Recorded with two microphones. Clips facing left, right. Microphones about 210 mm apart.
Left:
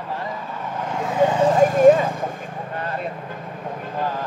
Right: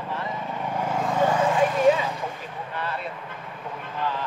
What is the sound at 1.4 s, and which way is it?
Vehicle, 40° left (ahead or behind).